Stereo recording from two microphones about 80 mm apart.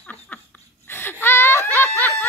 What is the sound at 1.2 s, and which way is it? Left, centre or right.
Snicker, left.